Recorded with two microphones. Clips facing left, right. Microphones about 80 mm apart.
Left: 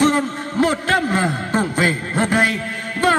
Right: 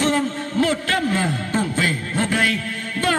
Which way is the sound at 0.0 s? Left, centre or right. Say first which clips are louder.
Left 3 dB; left.